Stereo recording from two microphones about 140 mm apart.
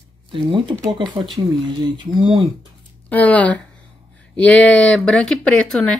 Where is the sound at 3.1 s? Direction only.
10° left (ahead or behind).